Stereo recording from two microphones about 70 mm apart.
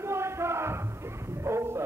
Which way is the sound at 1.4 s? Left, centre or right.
Right.